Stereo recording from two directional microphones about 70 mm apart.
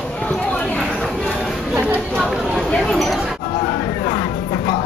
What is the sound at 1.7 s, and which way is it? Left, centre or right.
Chatter, right.